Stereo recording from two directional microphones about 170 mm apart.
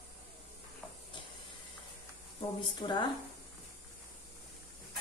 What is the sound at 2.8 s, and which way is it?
Speech, 30° left (ahead or behind).